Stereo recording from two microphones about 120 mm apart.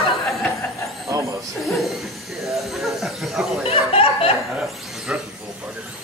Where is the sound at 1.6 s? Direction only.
Centre (ahead or behind).